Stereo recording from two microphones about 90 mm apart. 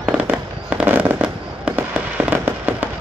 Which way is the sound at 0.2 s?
15° right (ahead or behind).